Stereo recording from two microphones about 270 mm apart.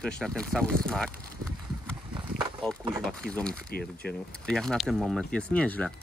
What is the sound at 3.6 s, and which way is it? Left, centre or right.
Speech, left.